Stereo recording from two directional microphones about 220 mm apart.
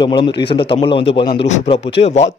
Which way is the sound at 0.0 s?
20° left (ahead or behind).